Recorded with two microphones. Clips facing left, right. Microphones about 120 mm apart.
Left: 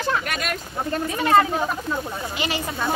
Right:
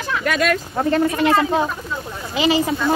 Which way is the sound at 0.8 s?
90° right.